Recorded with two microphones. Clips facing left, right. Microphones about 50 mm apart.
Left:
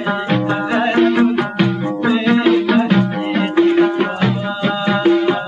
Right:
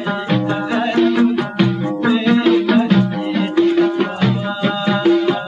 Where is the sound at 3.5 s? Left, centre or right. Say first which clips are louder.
Left 1 dB; left.